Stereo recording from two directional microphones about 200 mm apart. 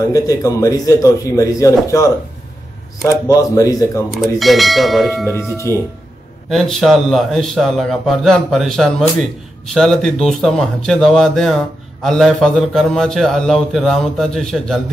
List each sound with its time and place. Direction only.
0.1 s a man's voice: 15° left (ahead or behind)
3.3 s a man's voice: 15° left (ahead or behind)
4.1 s speech: centre (ahead or behind)
5.3 s a man's voice: 15° left (ahead or behind)
6.5 s speech: centre (ahead or behind)